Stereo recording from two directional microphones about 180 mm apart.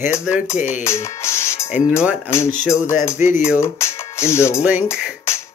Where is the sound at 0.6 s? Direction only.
45° left (ahead or behind).